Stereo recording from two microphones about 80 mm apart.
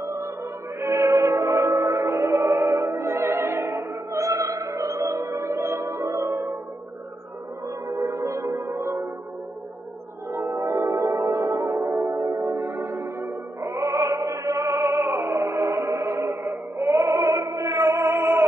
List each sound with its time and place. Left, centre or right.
0.0 s music: right
2.2 s opera: right
7.6 s music: right
10.3 s gong: right
12.5 s music: right